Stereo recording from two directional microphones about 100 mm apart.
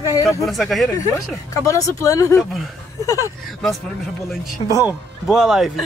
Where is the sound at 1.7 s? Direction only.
30° left (ahead or behind).